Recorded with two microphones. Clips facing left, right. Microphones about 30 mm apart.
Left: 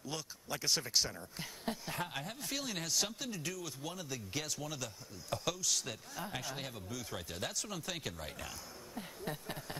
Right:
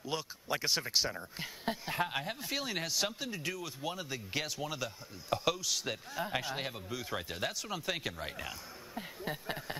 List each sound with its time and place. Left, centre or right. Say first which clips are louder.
0.0 s speech: right 5 dB; right